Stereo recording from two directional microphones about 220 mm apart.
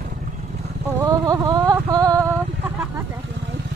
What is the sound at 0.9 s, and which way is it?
Vehicle, 15° right (ahead or behind).